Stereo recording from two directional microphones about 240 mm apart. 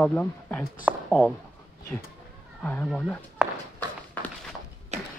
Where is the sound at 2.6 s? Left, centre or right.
Centre.